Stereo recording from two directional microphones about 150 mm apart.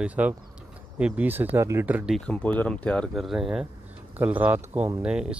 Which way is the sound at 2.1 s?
5° left (ahead or behind).